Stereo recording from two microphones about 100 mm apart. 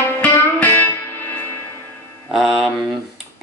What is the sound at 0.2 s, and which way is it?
Music, 15° left (ahead or behind).